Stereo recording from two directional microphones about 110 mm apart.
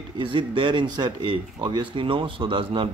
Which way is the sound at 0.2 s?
50° right (ahead or behind).